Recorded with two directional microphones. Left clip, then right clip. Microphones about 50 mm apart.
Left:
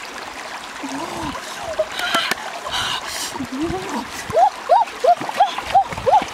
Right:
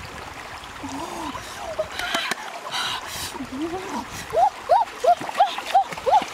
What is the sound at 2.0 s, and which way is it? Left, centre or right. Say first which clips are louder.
Rowboat: left 6 dB; centre.